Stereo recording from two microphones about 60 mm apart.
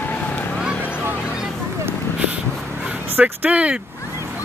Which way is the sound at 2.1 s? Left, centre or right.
Right.